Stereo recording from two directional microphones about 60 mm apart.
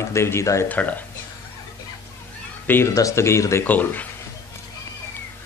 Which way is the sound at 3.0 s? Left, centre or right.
Left.